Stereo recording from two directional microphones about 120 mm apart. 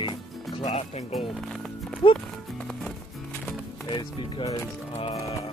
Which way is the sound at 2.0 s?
45° left (ahead or behind).